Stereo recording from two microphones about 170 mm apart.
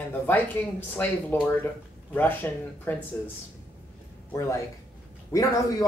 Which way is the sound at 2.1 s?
10° left (ahead or behind).